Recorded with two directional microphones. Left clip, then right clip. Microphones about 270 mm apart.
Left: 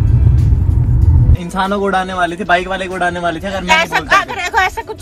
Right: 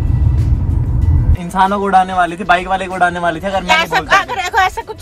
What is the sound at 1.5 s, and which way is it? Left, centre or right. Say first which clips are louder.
Speech: right 4 dB; centre.